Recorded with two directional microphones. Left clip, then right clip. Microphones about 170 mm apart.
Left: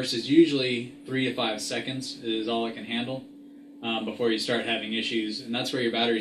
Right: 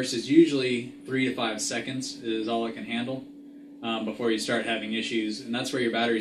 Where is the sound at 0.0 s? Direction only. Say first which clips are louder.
Even; 5° right (ahead or behind).